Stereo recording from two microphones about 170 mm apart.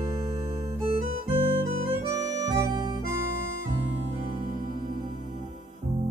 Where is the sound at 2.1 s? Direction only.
20° right (ahead or behind).